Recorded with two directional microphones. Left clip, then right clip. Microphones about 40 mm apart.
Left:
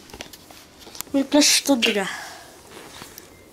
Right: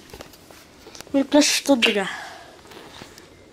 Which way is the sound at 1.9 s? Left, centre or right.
Centre.